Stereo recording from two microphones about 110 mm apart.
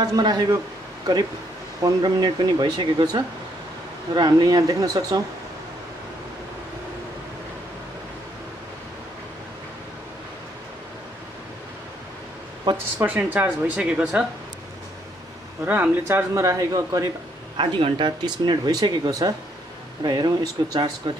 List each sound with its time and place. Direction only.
0.0 s speech: 40° right (ahead or behind)
1.8 s speech: 40° right (ahead or behind)
12.7 s speech: 35° right (ahead or behind)
13.0 s speech: 15° right (ahead or behind)
15.6 s speech: 20° right (ahead or behind)
16.4 s speech: 30° right (ahead or behind)
17.6 s speech: 50° right (ahead or behind)